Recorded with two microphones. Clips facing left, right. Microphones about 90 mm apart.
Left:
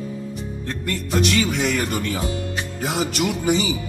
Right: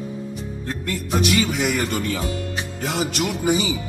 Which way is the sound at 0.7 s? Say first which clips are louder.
Even; 5° right (ahead or behind).